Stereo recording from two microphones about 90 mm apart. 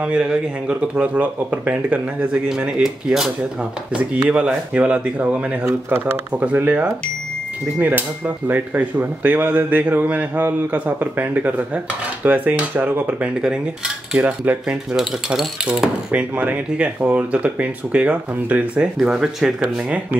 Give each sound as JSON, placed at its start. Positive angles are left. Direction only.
{"t": 0.0, "sound": "cutlery", "side_deg": -10}
{"t": 5.9, "sound": "a man's voice", "side_deg": -20}
{"t": 8.5, "sound": "a man's voice", "side_deg": -20}
{"t": 13.4, "sound": "cutlery", "side_deg": -10}